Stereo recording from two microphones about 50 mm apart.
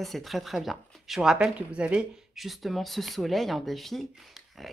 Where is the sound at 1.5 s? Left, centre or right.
Right.